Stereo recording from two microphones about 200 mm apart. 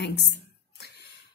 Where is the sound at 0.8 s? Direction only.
55° left (ahead or behind).